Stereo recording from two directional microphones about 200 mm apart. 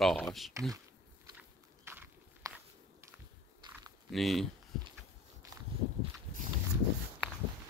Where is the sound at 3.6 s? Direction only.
20° right (ahead or behind).